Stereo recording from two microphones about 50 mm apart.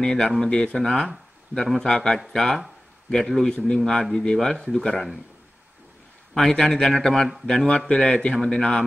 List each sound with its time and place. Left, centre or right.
0.0 s speech: centre
6.5 s speech: centre